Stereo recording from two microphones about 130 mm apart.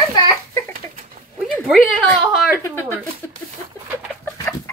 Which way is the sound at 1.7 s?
Centre (ahead or behind).